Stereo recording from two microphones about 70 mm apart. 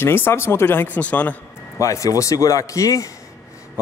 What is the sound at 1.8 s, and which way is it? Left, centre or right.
Speech, left.